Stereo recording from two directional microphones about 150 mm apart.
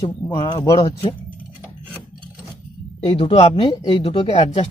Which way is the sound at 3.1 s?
35° left (ahead or behind).